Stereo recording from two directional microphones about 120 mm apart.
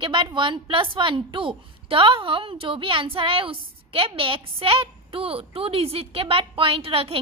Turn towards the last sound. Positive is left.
turn(degrees=-50)  # may be behind; listen again after turning